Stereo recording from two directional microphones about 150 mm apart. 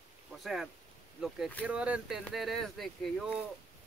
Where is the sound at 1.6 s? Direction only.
10° right (ahead or behind).